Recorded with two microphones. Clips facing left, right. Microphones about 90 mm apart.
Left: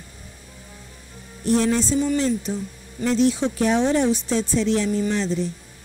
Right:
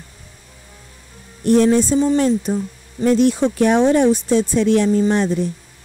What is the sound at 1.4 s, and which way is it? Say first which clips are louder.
Speech: right 6 dB; 60° right (ahead or behind).